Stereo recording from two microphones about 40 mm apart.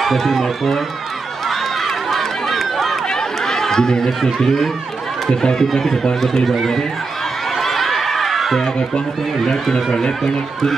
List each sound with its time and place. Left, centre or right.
0.0 s speech: centre
1.5 s run: centre
3.1 s run: centre
5.3 s speech: left
5.6 s speech: centre
7.5 s a sound: centre
9.5 s speech: centre